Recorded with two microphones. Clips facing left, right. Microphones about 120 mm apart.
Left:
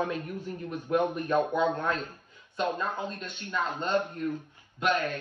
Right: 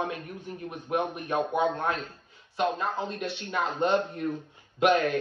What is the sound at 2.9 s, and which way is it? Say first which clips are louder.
Speech: right 3 dB; 20° right (ahead or behind).